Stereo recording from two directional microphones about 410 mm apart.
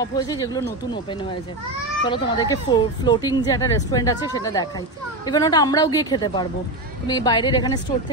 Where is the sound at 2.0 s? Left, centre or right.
Centre.